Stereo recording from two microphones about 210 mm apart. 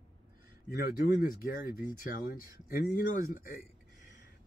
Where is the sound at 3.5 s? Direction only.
40° left (ahead or behind).